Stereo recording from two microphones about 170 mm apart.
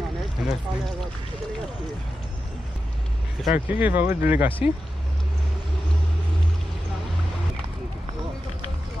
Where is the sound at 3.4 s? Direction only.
10° right (ahead or behind).